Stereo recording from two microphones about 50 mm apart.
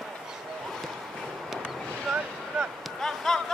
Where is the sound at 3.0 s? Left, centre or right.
Centre.